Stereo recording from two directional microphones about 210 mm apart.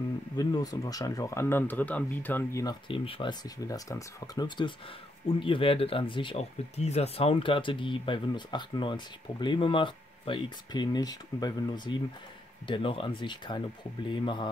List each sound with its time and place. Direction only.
0.4 s speech: 15° left (ahead or behind)
2.9 s speech: 25° left (ahead or behind)